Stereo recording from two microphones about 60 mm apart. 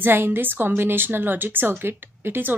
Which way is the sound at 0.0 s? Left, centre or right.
Right.